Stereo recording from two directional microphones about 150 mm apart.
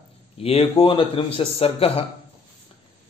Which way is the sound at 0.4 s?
40° left (ahead or behind).